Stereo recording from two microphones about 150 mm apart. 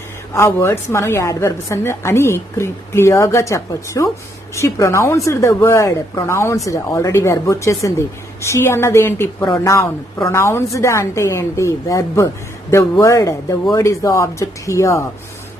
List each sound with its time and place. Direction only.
0.3 s a woman's voice: 15° left (ahead or behind)